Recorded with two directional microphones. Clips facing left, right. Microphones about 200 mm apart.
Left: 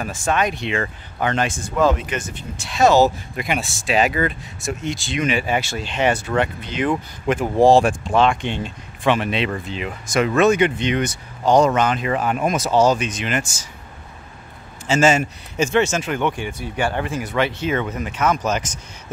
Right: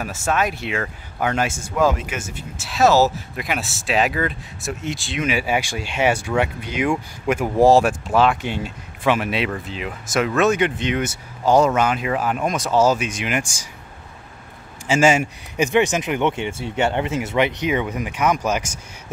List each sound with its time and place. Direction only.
0.0 s speech: 5° right (ahead or behind)
14.9 s speech: 10° right (ahead or behind)